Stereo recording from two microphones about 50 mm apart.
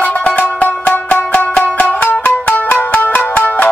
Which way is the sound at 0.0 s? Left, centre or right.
Left.